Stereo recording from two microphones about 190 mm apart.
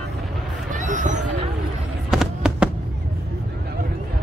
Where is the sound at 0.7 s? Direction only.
40° right (ahead or behind).